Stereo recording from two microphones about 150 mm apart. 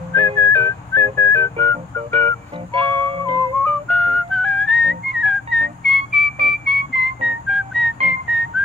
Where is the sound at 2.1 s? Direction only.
40° right (ahead or behind).